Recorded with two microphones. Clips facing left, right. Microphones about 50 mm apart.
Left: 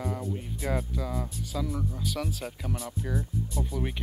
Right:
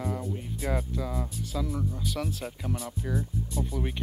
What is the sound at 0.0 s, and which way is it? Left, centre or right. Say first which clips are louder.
Speech: even; centre.